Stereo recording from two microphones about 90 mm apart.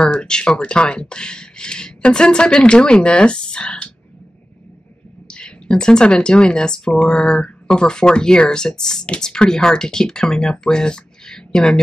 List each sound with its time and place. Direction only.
0.0 s speech: 10° left (ahead or behind)
5.3 s speech: 10° left (ahead or behind)